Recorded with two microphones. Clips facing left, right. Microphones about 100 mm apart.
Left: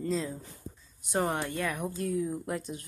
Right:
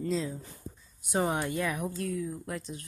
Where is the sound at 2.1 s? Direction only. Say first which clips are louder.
Left 3 dB; 20° left (ahead or behind).